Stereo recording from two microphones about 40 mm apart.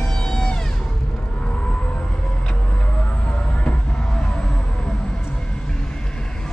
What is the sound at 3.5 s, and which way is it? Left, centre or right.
Music, left.